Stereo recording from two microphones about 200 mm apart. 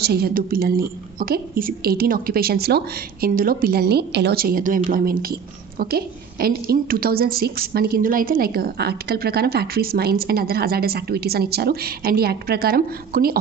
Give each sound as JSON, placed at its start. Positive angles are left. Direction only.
{"t": 0.0, "sound": "a woman's voice", "side_deg": -50}